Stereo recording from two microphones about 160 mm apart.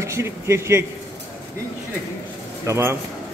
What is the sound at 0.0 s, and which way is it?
Speech, 15° right (ahead or behind).